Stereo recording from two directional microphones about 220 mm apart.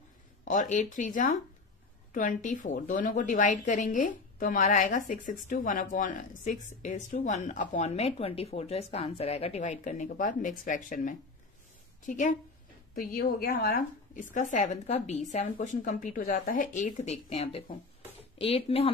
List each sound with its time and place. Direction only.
0.5 s a woman's voice: 35° left (ahead or behind)